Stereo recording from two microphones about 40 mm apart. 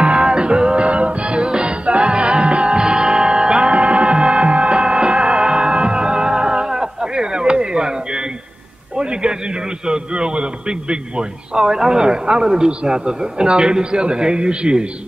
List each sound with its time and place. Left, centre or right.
0.0 s music: right
8.9 s a man's voice: right